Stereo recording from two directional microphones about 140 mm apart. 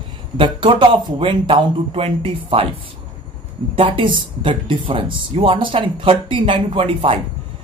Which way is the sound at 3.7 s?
40° right (ahead or behind).